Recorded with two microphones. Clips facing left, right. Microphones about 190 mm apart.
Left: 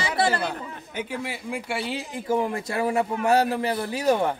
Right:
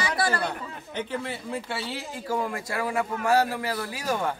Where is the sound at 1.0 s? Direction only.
10° left (ahead or behind).